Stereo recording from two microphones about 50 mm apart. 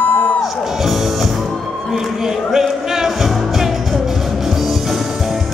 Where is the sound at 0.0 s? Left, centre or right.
Left.